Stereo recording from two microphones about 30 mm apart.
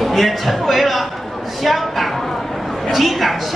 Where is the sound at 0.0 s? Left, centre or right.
Centre.